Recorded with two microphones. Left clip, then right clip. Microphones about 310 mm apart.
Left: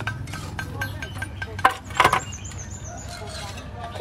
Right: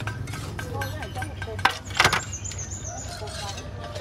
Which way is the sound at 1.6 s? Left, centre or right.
Centre.